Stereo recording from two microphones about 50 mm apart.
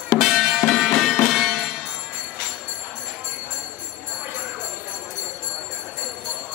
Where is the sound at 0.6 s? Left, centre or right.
Centre.